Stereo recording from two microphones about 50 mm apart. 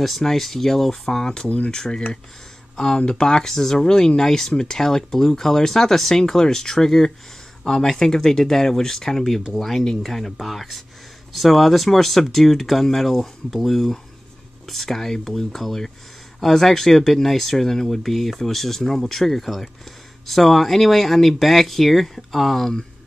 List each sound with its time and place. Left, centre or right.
0.0 s speech: centre
1.5 s speech: left; by 22.8 s centre